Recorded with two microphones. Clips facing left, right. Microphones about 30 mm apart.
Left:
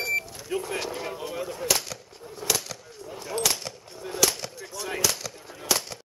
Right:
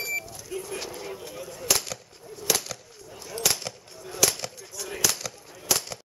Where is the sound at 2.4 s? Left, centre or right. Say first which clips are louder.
Right 1 dB; left.